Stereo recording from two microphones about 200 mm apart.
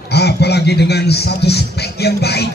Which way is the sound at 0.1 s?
55° left (ahead or behind).